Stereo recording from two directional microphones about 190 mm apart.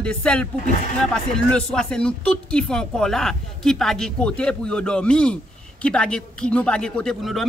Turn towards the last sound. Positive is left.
turn(degrees=0)  # may be behind; listen again after turning